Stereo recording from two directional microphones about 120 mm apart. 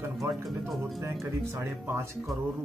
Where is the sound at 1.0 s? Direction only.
20° right (ahead or behind).